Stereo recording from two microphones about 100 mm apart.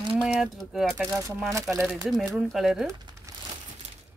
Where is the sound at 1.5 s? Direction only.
30° right (ahead or behind).